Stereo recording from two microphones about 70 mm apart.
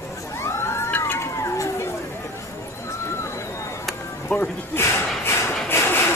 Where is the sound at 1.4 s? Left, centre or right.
Left.